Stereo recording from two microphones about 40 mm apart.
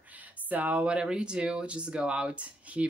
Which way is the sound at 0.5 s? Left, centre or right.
Right.